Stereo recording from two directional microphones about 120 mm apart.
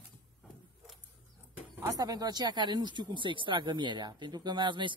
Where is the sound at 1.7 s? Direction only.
30° right (ahead or behind).